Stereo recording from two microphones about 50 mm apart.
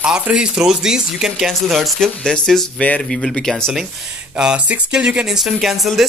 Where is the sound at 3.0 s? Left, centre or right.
Centre.